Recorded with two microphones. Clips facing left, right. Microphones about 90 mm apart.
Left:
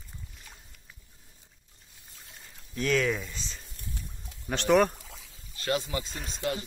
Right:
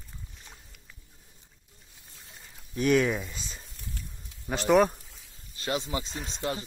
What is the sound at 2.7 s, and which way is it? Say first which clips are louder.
Speech: right 3 dB; 20° right (ahead or behind).